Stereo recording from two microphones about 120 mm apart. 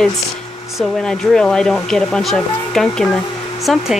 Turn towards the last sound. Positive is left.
turn(degrees=0)  # may be behind; listen again after turning